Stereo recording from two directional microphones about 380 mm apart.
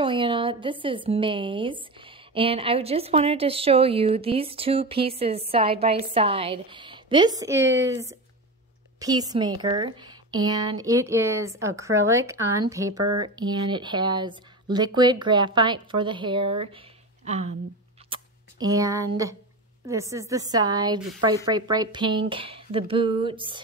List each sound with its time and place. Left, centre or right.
0.0 s speech: centre
13.0 s speech: right
13.4 s speech: centre